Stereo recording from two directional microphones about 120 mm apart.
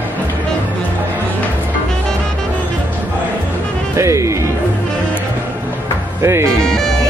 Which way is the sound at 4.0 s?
25° right (ahead or behind).